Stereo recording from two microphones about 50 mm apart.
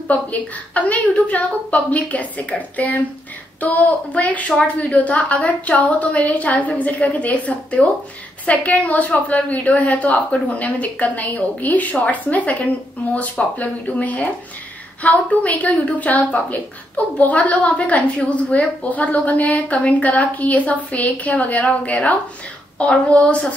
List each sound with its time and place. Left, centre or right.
0.1 s a woman's voice: left